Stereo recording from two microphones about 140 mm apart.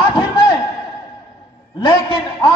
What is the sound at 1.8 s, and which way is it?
Speech, 35° left (ahead or behind).